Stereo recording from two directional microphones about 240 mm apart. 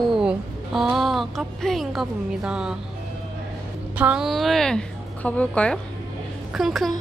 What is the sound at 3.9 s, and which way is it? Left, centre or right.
A woman's voice, centre.